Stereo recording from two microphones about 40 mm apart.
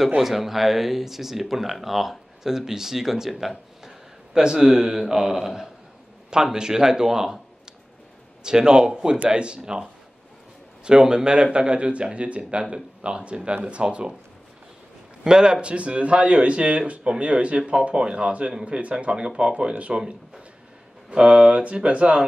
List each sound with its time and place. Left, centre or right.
0.2 s speech: centre
8.5 s speech: centre
10.9 s speech: centre
15.2 s speech: right
17.6 s speech: centre